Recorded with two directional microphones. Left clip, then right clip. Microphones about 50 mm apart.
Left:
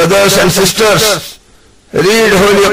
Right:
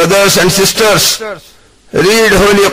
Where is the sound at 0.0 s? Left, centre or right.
Right.